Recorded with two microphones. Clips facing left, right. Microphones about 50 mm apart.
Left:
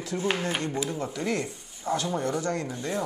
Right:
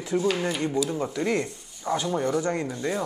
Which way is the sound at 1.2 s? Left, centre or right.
Centre.